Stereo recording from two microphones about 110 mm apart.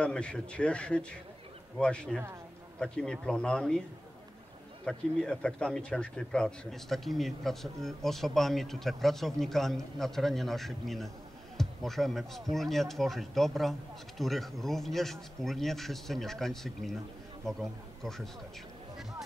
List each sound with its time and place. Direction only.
0.0 s a man's voice: 10° left (ahead or behind)
4.8 s a man's voice: 5° left (ahead or behind)